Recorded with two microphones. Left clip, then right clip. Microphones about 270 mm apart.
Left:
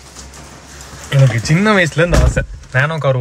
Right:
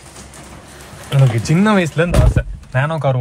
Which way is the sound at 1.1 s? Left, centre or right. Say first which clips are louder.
Left 2 dB; centre.